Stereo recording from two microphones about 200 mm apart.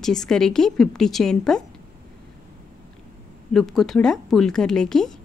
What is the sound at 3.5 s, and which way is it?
Speech, centre (ahead or behind).